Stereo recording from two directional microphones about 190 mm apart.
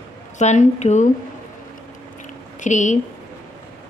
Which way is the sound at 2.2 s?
40° left (ahead or behind).